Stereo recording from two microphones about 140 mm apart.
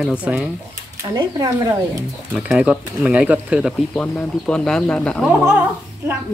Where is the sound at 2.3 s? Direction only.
5° right (ahead or behind).